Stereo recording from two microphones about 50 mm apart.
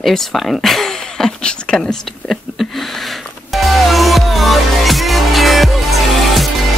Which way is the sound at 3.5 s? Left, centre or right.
Centre.